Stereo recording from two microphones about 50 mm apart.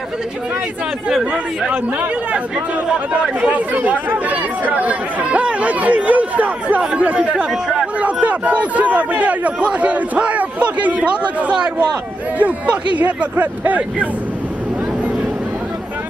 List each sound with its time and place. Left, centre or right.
2.9 s speech: right
3.7 s speech: right
11.5 s speech: centre
12.4 s speech: right